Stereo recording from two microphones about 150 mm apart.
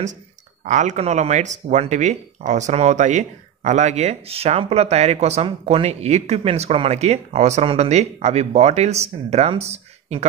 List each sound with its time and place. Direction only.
0.7 s speech: 55° right (ahead or behind)